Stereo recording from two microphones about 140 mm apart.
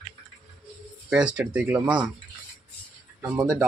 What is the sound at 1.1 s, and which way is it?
Speech, 10° right (ahead or behind).